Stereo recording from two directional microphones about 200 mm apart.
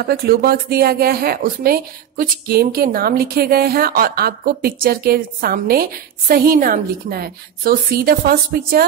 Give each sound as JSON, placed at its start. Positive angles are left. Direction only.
{"t": 0.0, "sound": "speech", "side_deg": -50}